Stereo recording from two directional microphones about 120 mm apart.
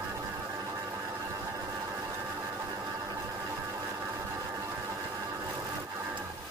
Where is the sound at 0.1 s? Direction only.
25° right (ahead or behind).